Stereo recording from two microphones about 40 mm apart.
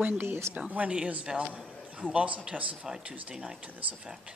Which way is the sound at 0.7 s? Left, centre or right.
Right.